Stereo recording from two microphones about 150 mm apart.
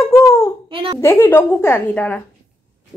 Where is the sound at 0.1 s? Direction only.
20° left (ahead or behind).